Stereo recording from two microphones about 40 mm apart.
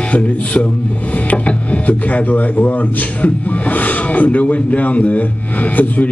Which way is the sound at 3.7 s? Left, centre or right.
Left.